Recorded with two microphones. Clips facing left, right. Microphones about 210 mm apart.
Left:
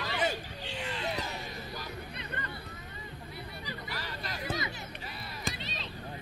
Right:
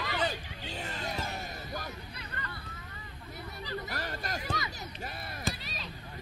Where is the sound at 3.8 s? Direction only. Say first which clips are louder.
Right 3 dB; 50° right (ahead or behind).